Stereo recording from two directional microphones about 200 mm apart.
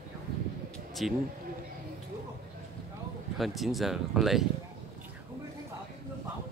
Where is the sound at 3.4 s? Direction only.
Centre (ahead or behind).